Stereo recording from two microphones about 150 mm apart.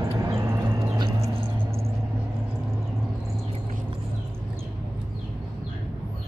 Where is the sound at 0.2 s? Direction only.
20° right (ahead or behind).